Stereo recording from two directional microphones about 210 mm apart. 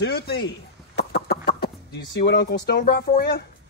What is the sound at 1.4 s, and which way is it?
Speech, 50° left (ahead or behind).